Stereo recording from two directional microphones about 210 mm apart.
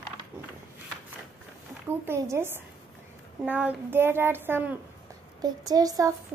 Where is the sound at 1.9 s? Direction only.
10° right (ahead or behind).